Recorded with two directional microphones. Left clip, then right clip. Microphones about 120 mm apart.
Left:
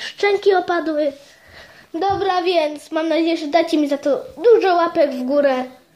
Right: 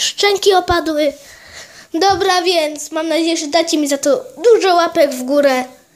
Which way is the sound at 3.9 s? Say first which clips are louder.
Right 4 dB; 25° right (ahead or behind).